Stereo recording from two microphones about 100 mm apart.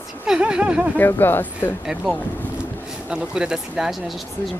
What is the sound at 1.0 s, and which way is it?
Speech, 20° left (ahead or behind).